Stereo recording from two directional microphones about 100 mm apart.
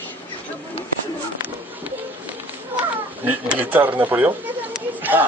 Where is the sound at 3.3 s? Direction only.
20° right (ahead or behind).